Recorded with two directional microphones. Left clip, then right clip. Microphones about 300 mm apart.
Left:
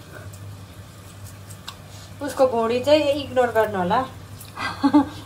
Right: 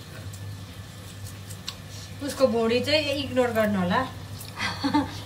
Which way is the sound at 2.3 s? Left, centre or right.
Centre.